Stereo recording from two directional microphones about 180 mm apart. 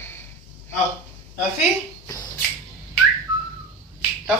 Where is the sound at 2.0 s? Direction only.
20° left (ahead or behind).